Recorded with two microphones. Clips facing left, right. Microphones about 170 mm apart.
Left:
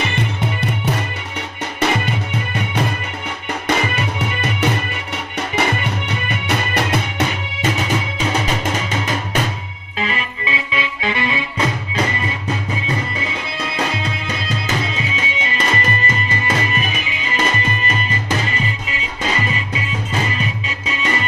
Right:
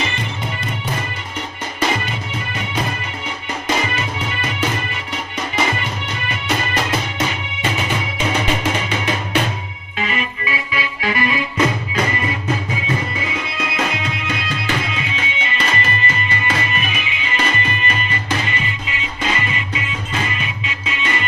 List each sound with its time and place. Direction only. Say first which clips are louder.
6.0 s music: left 1 dB; 60° left (ahead or behind)
9.9 s music: even; 30° left (ahead or behind)
14.2 s music: right 1 dB; 30° left (ahead or behind)
20.3 s music: left 3 dB; 40° left (ahead or behind)